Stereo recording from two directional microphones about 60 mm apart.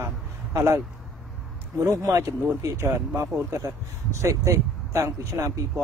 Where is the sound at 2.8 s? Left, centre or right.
Right.